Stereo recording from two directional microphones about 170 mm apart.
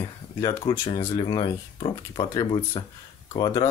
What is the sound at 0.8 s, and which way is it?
Speech, 30° left (ahead or behind).